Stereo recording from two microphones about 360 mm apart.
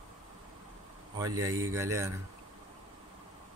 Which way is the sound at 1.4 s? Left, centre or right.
Centre.